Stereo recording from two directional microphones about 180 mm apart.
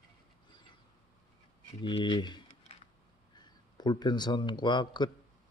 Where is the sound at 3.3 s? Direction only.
25° left (ahead or behind).